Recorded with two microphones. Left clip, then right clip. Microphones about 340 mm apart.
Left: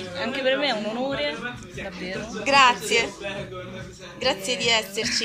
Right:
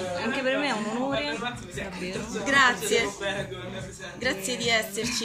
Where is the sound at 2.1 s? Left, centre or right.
Centre.